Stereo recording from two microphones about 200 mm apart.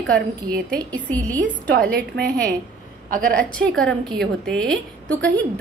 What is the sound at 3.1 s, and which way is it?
Speech, 45° right (ahead or behind).